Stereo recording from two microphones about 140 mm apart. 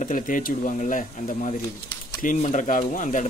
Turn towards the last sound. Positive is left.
turn(degrees=65)  # may be behind; listen again after turning